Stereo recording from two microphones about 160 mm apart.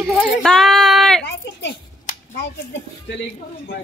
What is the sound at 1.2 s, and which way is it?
Speech, 90° left.